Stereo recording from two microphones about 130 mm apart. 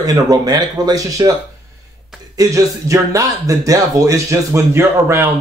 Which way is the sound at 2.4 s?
25° right (ahead or behind).